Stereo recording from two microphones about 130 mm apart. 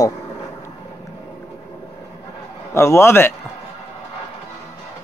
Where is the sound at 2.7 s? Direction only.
20° left (ahead or behind).